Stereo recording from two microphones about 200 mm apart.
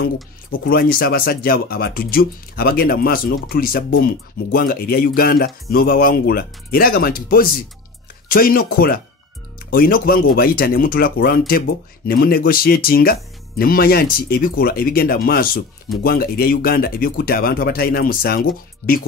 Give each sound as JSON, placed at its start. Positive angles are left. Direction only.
{"t": 0.7, "sound": "speech", "side_deg": 50}